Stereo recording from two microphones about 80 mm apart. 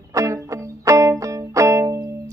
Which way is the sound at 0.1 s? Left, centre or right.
Right.